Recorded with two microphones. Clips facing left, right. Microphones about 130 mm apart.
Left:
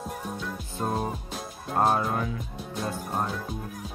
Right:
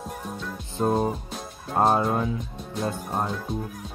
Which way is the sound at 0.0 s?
Centre (ahead or behind).